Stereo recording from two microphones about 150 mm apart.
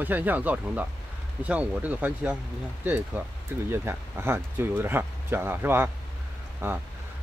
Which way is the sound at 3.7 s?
15° right (ahead or behind).